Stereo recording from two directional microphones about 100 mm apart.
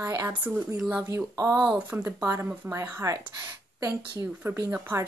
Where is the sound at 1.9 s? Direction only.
25° right (ahead or behind).